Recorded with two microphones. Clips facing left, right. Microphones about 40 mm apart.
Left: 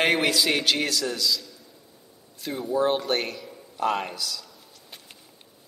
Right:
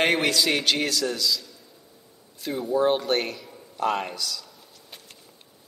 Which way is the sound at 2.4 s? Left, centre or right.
Centre.